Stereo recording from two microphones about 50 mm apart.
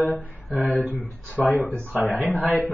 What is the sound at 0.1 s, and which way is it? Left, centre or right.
Speech, left.